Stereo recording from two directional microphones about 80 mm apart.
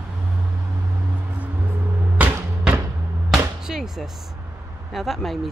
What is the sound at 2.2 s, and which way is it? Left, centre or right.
Music, right.